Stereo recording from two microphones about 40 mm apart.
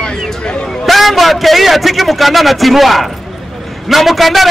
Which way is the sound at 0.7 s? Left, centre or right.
Centre.